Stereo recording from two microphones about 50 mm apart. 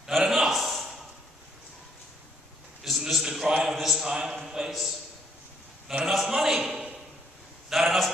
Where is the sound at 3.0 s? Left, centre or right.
Centre.